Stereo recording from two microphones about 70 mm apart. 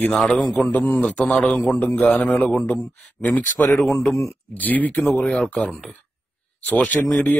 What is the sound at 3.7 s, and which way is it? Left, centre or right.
Speech, centre.